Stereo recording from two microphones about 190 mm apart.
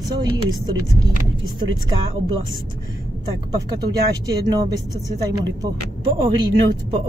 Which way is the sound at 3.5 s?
20° right (ahead or behind).